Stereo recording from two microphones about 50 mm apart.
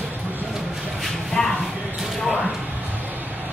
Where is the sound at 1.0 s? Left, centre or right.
Centre.